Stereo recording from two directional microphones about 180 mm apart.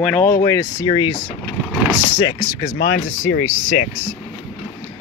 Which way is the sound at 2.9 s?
40° left (ahead or behind).